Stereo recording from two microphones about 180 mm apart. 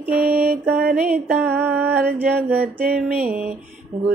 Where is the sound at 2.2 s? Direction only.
10° right (ahead or behind).